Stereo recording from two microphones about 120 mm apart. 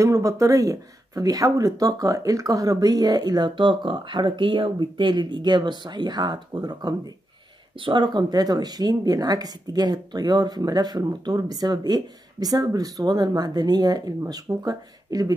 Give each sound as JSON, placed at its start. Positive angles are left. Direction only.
{"t": 0.0, "sound": "speech", "side_deg": -25}